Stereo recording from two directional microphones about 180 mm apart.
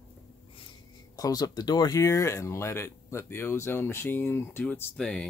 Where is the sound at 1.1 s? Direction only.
20° left (ahead or behind).